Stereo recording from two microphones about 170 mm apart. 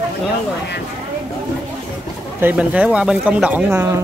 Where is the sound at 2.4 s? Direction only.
10° right (ahead or behind).